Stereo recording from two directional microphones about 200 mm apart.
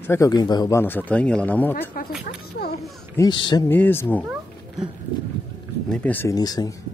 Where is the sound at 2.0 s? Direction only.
45° left (ahead or behind).